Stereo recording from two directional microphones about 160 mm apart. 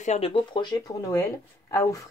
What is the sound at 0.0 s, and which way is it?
Speech, 40° left (ahead or behind).